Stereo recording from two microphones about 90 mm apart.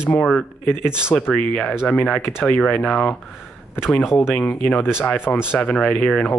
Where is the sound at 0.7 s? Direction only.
10° right (ahead or behind).